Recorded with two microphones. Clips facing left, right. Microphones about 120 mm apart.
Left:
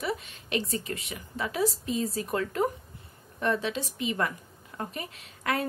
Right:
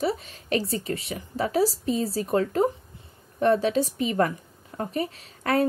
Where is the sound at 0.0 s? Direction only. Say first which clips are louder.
Right 6 dB; 35° right (ahead or behind).